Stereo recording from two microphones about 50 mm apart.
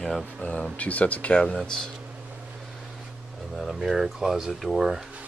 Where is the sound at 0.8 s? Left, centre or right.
Left; by 1.9 s centre.